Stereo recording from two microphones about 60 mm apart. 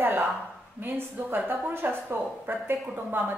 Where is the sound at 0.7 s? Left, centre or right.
Right.